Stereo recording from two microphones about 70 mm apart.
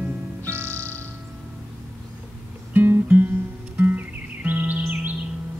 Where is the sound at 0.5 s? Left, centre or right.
Right.